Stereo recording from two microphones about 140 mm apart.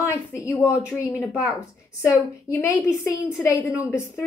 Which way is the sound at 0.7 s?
10° right (ahead or behind).